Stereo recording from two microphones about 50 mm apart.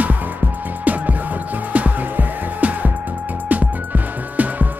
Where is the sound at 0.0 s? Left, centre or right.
Right.